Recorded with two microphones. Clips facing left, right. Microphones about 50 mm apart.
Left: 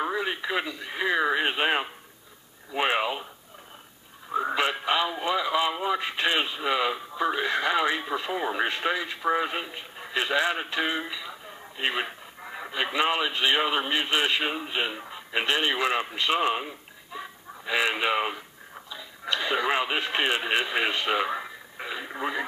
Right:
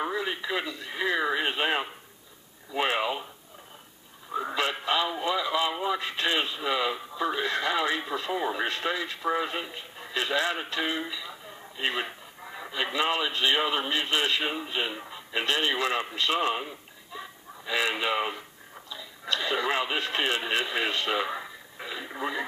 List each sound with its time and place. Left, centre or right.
0.2 s speech: centre
4.3 s speech: left
14.9 s radio: centre
15.3 s speech: left
21.7 s radio: centre